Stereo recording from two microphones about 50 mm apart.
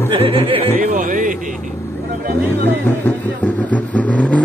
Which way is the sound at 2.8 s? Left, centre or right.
Left.